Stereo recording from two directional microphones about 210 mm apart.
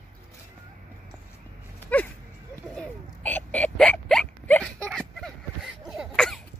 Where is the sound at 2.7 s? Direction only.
5° left (ahead or behind).